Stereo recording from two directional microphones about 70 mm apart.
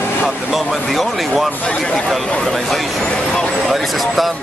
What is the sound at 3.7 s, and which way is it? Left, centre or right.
Speech, centre.